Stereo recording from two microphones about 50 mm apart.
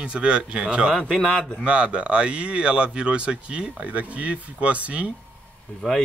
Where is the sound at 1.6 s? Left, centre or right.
Right.